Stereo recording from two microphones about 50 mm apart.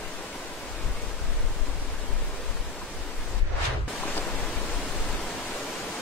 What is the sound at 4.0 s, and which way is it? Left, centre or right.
Pink noise, left.